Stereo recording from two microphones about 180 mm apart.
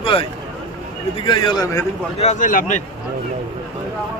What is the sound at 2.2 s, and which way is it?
Speech, 40° left (ahead or behind).